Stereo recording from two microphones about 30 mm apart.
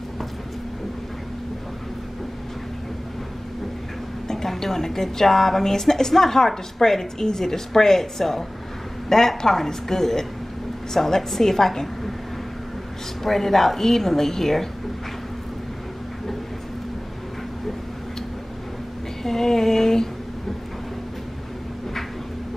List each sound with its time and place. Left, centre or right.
4.3 s a woman's voice: centre
13.2 s a woman's voice: centre
19.2 s a sound: centre